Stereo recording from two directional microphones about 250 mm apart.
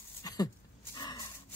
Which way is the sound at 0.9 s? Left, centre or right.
Centre.